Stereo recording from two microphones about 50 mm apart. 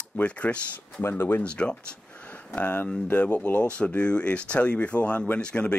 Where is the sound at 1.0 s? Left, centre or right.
Left.